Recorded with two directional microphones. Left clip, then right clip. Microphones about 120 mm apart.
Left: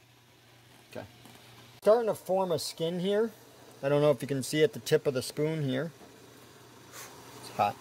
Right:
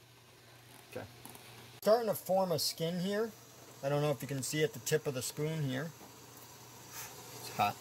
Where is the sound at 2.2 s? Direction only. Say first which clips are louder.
Left 3 dB; 40° left (ahead or behind).